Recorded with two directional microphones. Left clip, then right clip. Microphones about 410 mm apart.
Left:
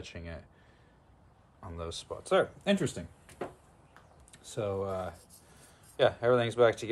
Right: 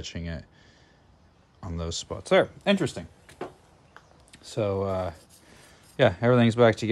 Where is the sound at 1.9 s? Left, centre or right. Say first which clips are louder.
Right 6 dB; centre.